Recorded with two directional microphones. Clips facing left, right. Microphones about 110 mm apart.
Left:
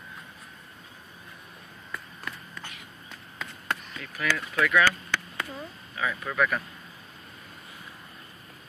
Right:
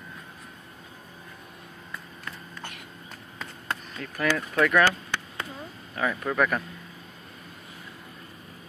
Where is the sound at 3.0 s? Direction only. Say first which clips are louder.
Left 1 dB; 35° right (ahead or behind).